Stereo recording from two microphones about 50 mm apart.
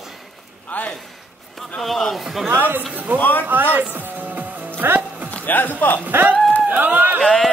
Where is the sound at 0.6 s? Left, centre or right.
Left.